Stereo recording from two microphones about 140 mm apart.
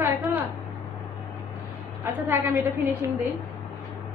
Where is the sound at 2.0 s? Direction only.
15° right (ahead or behind).